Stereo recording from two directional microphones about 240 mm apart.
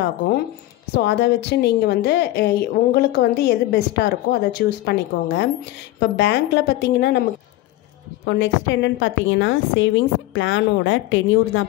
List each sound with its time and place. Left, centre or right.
0.9 s a woman's voice: left
8.3 s a woman's voice: left